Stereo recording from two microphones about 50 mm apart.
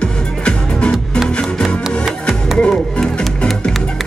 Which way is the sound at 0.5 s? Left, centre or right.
Centre.